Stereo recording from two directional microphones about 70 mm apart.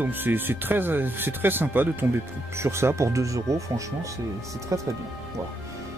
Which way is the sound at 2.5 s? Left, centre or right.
Right.